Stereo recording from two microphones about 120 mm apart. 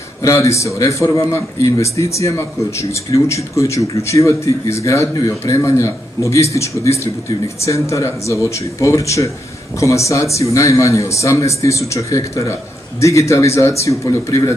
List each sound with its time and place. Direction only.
0.2 s speech: 25° left (ahead or behind)